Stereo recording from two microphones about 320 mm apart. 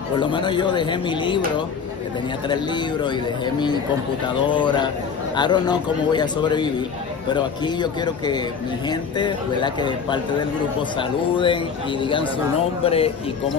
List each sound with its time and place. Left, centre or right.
0.1 s a man's voice: centre
2.4 s a man's voice: centre